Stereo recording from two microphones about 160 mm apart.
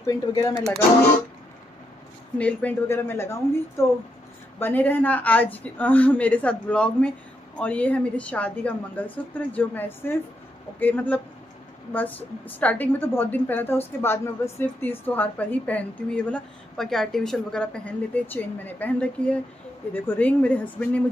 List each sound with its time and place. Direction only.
0.0 s speech: 20° left (ahead or behind)
2.3 s a woman's voice: 10° left (ahead or behind)